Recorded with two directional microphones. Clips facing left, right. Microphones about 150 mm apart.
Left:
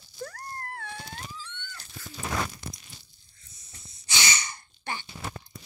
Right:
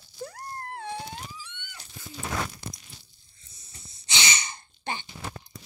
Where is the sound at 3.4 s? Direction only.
30° right (ahead or behind).